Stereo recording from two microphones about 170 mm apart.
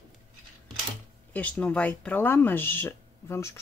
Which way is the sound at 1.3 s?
10° left (ahead or behind).